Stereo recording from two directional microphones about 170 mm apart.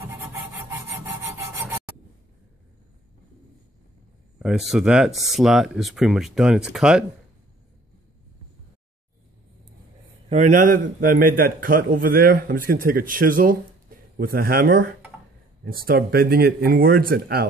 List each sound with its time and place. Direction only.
0.1 s rub: 15° right (ahead or behind)
4.4 s speech: 5° right (ahead or behind)
10.3 s a man's voice: 50° right (ahead or behind); by 17.5 s 65° right (ahead or behind)